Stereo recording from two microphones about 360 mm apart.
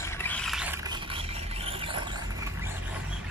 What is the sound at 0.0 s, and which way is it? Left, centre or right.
Mechanisms, centre.